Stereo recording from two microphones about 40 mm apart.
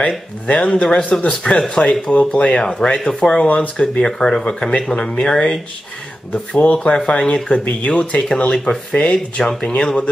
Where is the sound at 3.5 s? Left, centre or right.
Left.